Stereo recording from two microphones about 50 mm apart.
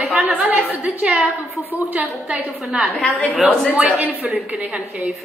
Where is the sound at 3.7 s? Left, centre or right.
Right.